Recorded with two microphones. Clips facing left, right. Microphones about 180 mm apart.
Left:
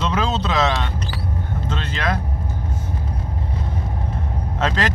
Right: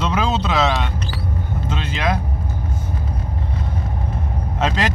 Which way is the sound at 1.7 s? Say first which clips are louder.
Right 2 dB; 15° right (ahead or behind).